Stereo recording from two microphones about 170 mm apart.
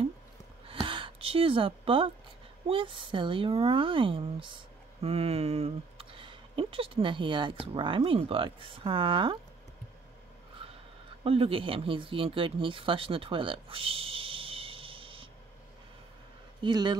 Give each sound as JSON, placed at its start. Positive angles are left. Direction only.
{"t": 0.7, "sound": "a sound", "side_deg": -30}
{"t": 2.7, "sound": "speech", "side_deg": -30}
{"t": 11.2, "sound": "speech", "side_deg": -35}
{"t": 16.6, "sound": "speech", "side_deg": -25}